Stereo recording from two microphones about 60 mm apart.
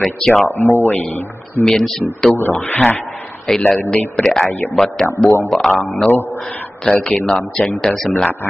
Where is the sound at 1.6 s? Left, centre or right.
Centre.